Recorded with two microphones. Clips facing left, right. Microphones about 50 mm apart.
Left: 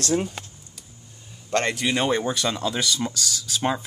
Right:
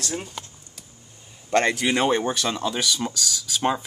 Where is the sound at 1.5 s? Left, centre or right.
Right.